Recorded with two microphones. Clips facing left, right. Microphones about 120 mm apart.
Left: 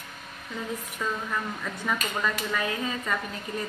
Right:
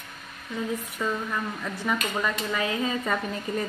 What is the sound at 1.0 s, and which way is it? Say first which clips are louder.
Speech: right 1 dB; 10° right (ahead or behind).